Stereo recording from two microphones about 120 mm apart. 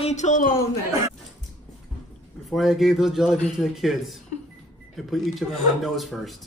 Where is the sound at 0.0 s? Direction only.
80° left.